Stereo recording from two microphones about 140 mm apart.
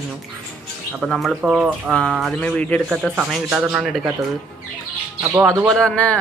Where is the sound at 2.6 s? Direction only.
10° left (ahead or behind).